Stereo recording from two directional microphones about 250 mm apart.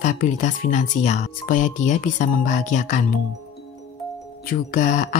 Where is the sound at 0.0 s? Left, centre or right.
Left.